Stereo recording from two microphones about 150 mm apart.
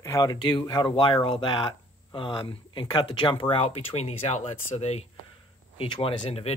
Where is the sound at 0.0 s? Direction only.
20° left (ahead or behind).